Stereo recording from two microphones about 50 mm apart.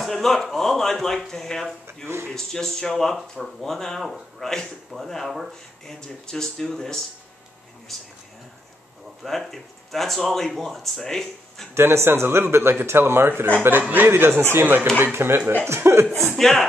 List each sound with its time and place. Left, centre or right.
0.0 s speech: centre
2.0 s speech: right
2.3 s speech: centre
3.2 s speech: centre
5.9 s speech: centre
9.2 s speech: centre
11.7 s speech: right
13.6 s speech: right
15.6 s speech: right
16.3 s speech: centre